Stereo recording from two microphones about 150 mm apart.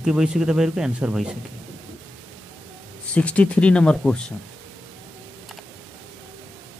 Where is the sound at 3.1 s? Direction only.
10° left (ahead or behind).